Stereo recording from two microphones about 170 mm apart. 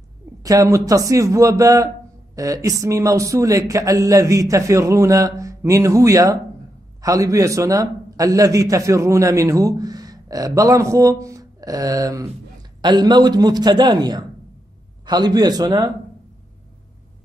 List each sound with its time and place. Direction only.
0.4 s a man's voice: 20° right (ahead or behind)